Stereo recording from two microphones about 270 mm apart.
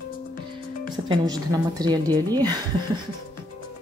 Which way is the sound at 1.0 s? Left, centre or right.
Centre.